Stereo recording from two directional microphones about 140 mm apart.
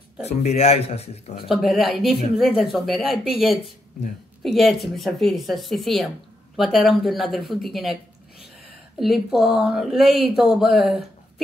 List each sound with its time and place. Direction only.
0.2 s speech: 50° left (ahead or behind)
1.5 s speech: centre (ahead or behind)
9.0 s speech: centre (ahead or behind)